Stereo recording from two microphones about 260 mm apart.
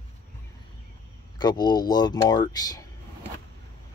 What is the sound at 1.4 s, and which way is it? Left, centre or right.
Speech, centre.